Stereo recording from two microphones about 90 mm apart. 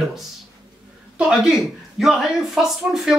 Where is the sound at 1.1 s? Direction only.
10° right (ahead or behind).